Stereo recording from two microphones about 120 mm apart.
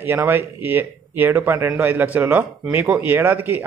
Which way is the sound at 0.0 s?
20° right (ahead or behind).